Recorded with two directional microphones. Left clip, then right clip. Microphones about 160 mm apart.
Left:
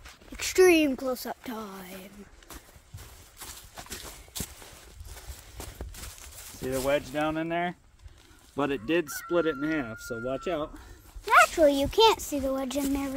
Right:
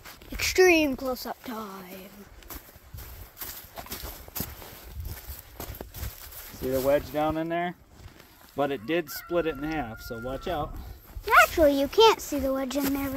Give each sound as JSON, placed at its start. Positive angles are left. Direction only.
{"t": 0.6, "sound": "speech", "side_deg": 20}
{"t": 2.4, "sound": "horse", "side_deg": -55}
{"t": 6.9, "sound": "speech", "side_deg": -15}
{"t": 11.2, "sound": "speech", "side_deg": 15}